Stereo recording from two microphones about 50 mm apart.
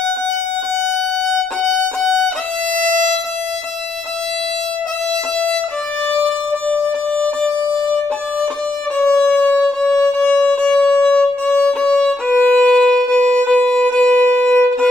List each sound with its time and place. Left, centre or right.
6.7 s music: left
9.0 s music: centre; by 10.5 s left
10.5 s violin: centre
13.7 s music: centre
14.2 s violin: left